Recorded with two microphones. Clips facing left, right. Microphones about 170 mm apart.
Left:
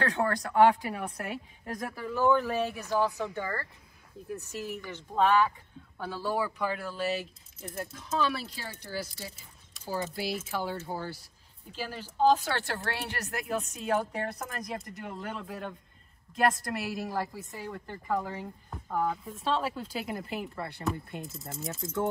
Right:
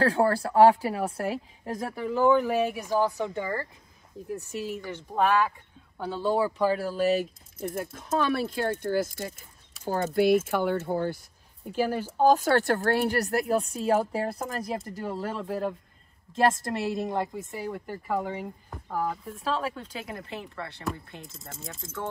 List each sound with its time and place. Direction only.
0.0 s a woman's voice: 30° right (ahead or behind)
7.7 s a woman's voice: 50° right (ahead or behind); by 18.2 s 10° right (ahead or behind)
18.2 s a woman's voice: 20° right (ahead or behind)
18.7 s speech: centre (ahead or behind)